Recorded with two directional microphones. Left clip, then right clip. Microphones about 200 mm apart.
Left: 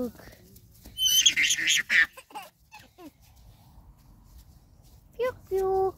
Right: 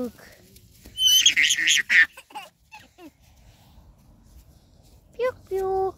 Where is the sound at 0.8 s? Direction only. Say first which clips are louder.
Right 4 dB; 30° left (ahead or behind).